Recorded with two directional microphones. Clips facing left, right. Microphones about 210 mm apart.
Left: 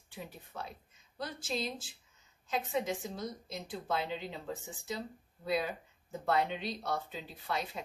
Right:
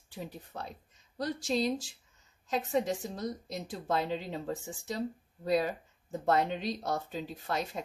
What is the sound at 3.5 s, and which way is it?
Speech, 40° right (ahead or behind).